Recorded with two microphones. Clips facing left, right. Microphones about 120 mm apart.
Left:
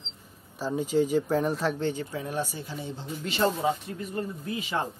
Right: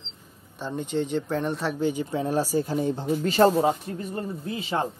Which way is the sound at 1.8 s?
15° right (ahead or behind).